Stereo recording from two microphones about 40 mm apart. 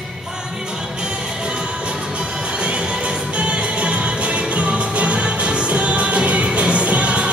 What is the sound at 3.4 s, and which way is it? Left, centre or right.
Music, right.